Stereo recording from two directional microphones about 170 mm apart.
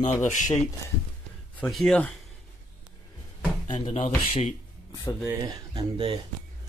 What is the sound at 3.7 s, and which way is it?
Speech, 30° left (ahead or behind).